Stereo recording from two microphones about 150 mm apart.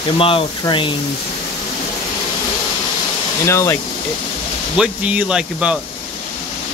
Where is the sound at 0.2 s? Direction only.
35° left (ahead or behind).